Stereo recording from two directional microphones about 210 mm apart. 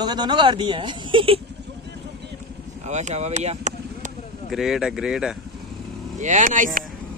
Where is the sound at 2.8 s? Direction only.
35° right (ahead or behind).